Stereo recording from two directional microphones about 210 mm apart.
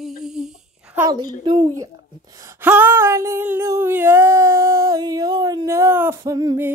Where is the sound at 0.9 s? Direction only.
20° right (ahead or behind).